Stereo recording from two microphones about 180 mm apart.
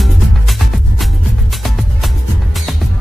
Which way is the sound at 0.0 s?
Centre (ahead or behind).